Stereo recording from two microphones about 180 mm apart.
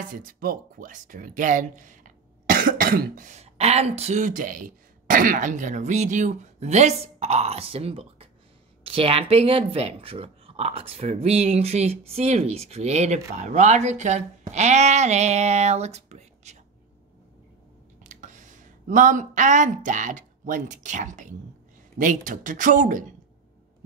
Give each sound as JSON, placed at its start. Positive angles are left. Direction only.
{"t": 0.1, "sound": "speech", "side_deg": -50}
{"t": 18.0, "sound": "speech", "side_deg": -45}